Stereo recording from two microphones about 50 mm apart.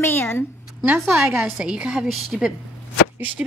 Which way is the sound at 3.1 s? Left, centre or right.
Right.